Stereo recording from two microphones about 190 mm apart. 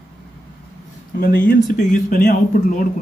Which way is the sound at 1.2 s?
60° left (ahead or behind).